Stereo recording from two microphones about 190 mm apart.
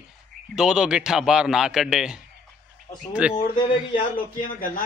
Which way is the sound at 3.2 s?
5° right (ahead or behind).